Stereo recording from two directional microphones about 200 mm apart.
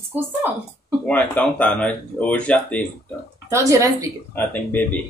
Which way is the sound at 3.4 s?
15° right (ahead or behind).